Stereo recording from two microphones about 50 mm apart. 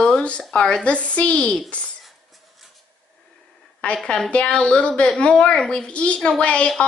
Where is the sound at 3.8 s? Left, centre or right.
Centre.